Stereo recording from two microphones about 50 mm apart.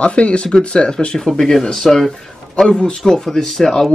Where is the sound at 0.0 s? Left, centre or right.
Left.